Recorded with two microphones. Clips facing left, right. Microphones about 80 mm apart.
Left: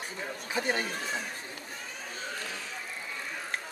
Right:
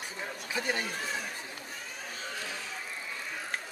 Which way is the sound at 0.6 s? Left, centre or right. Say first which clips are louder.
Left 2 dB; left.